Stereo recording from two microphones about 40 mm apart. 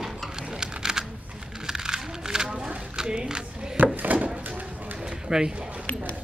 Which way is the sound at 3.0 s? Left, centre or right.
Centre.